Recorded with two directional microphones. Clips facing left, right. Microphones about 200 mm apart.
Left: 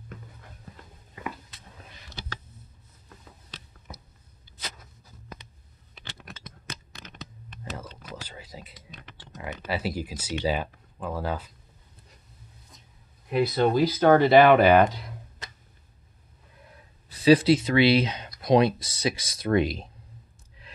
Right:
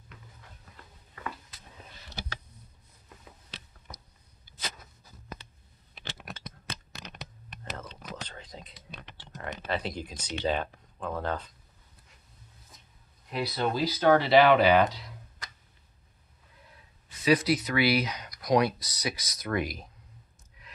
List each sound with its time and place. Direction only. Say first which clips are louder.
8.0 s whispering: left 1 dB; 10° left (ahead or behind)
9.4 s speech: left 2 dB; 5° left (ahead or behind)
12.7 s a sound: left 3 dB; centre (ahead or behind)
13.3 s speech: left 7 dB; 55° left (ahead or behind)
17.1 s speech: left 6 dB; 30° left (ahead or behind)
20.6 s a sound: left 3 dB; 30° left (ahead or behind)